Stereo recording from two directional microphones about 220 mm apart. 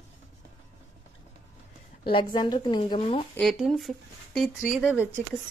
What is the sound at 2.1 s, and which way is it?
A woman's voice, 20° left (ahead or behind).